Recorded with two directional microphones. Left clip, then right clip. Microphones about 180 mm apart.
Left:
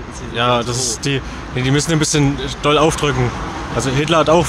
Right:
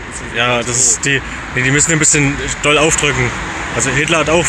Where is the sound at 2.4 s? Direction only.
20° left (ahead or behind).